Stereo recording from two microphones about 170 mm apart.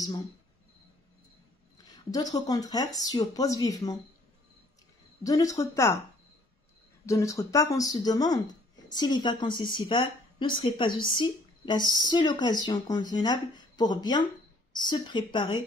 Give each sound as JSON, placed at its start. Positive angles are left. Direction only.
{"t": 1.9, "sound": "speech", "side_deg": 20}
{"t": 5.2, "sound": "speech", "side_deg": 20}
{"t": 7.1, "sound": "speech", "side_deg": 20}